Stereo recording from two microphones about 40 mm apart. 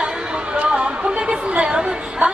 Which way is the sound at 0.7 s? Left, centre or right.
Right.